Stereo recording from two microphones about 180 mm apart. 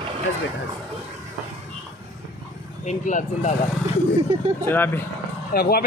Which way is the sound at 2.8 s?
45° left (ahead or behind).